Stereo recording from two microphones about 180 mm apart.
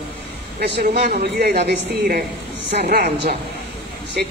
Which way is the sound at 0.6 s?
65° right (ahead or behind).